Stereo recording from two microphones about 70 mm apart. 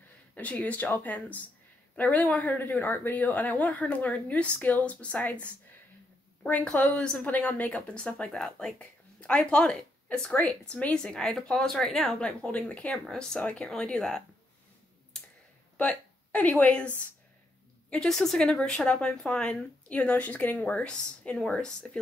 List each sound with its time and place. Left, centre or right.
0.4 s a woman's voice: left
12.9 s a woman's voice: centre
15.8 s a woman's voice: centre
17.8 s a woman's voice: centre